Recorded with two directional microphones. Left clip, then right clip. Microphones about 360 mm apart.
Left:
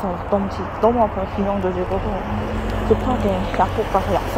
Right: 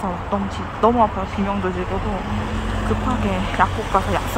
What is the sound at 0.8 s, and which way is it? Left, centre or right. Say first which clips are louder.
Speech: even; centre.